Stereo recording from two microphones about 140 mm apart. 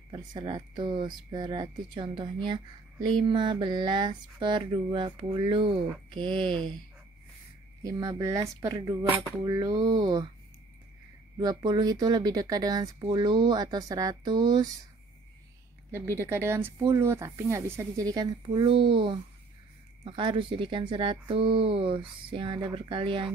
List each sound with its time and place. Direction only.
0.1 s speech: 30° right (ahead or behind)
6.5 s speech: 5° left (ahead or behind)
7.8 s speech: 25° right (ahead or behind)
11.3 s speech: 30° right (ahead or behind)
15.9 s speech: 20° right (ahead or behind); by 23.3 s 35° right (ahead or behind)